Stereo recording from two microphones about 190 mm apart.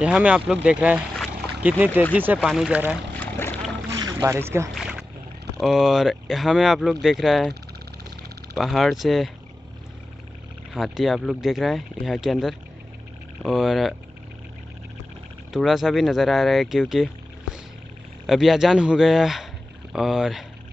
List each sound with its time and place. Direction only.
0.0 s speech: 5° right (ahead or behind)
3.2 s boat: 10° left (ahead or behind)
3.9 s boat: 20° right (ahead or behind)
4.7 s rowboat: 5° right (ahead or behind)
5.6 s speech: centre (ahead or behind)
8.5 s speech: centre (ahead or behind)
10.7 s speech: centre (ahead or behind)
15.5 s speech: centre (ahead or behind)
18.2 s speech: centre (ahead or behind)